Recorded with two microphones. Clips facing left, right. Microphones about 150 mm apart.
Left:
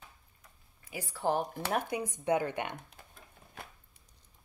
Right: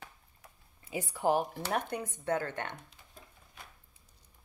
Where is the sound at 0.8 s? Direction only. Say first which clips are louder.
Right 2 dB; 20° right (ahead or behind).